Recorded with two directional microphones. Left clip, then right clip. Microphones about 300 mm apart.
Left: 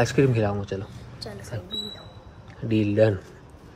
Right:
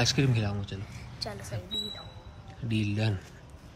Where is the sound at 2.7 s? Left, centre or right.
Centre.